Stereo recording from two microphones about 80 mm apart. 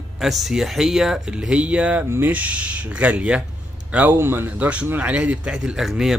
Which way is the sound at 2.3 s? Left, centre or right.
Centre.